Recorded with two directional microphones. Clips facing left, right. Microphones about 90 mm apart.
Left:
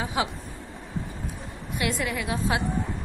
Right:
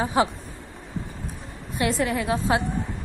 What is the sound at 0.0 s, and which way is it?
Speech, 40° right (ahead or behind).